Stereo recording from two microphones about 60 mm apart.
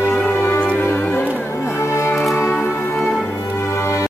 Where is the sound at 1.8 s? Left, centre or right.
Left.